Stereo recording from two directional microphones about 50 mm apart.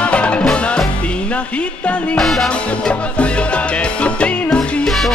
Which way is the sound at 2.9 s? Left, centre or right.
Left.